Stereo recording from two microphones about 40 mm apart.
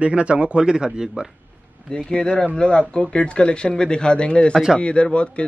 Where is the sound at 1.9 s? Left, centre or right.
Centre.